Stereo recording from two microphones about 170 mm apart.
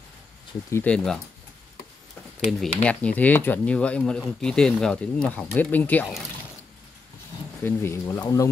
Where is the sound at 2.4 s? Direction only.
Centre (ahead or behind).